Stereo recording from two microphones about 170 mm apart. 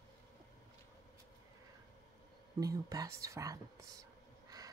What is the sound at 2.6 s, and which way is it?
Speech, 20° right (ahead or behind).